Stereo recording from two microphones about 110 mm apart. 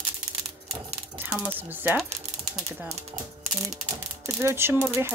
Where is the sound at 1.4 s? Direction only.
15° right (ahead or behind).